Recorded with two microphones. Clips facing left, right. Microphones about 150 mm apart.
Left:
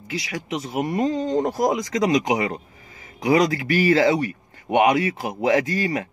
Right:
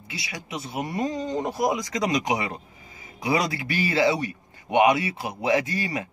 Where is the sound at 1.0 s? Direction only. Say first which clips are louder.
Left 4 dB; 30° left (ahead or behind).